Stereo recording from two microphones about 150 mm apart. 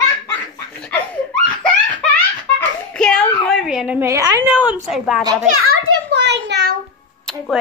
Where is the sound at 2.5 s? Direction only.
5° left (ahead or behind).